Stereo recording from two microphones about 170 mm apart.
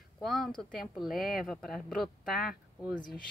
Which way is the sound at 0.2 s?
Centre (ahead or behind).